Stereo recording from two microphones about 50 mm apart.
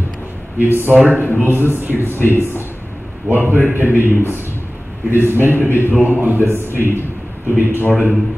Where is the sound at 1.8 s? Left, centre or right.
Right.